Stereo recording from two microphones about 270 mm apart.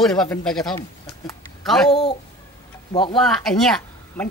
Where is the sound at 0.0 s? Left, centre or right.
Centre.